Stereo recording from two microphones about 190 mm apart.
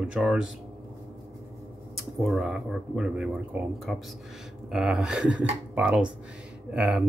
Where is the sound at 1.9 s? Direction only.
Centre (ahead or behind).